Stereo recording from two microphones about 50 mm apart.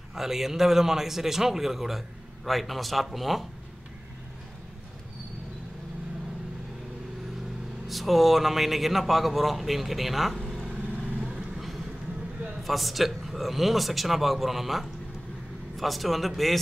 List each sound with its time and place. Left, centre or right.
0.1 s a man's voice: centre
7.9 s speech: centre
10.7 s vehicle: right
11.3 s vehicle: centre
12.6 s speech: centre